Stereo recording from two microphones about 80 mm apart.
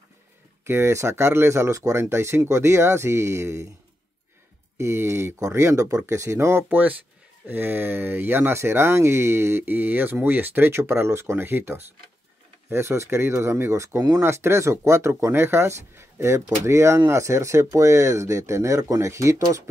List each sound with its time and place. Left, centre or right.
0.7 s speech: right
4.7 s speech: right